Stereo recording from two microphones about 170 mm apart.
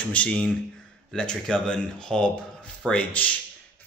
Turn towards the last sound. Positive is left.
turn(degrees=5)  # may be behind; listen again after turning